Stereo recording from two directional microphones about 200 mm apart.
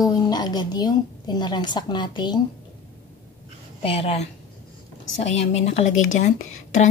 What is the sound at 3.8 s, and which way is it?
A woman's voice, 30° left (ahead or behind).